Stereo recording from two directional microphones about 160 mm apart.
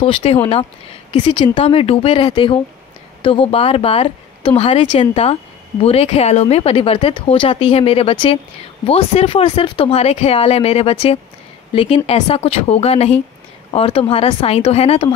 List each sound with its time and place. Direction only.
0.0 s speech: 35° left (ahead or behind)